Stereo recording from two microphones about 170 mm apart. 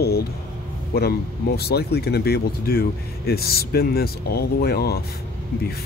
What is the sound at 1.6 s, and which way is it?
Speech, 70° left (ahead or behind).